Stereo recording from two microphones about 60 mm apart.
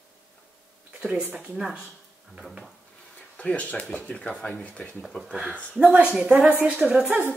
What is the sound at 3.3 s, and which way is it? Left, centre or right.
Speech, left.